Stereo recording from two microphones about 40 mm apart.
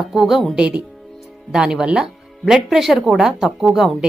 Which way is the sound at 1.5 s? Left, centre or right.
Centre.